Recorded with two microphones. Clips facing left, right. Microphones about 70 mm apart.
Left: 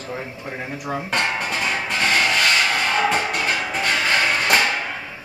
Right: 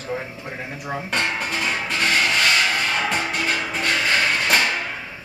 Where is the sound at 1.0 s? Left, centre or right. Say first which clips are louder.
Left 1 dB; centre.